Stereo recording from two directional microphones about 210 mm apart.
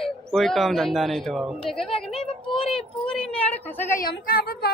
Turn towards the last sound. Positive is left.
turn(degrees=45)  # may be behind; listen again after turning